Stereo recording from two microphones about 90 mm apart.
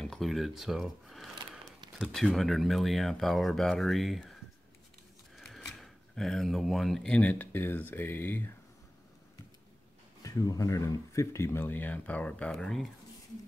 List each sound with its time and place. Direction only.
0.0 s speech: 5° left (ahead or behind)
5.3 s a sound: centre (ahead or behind)
7.2 s speech: 20° left (ahead or behind)
10.2 s speech: 40° left (ahead or behind); by 12.9 s 5° left (ahead or behind)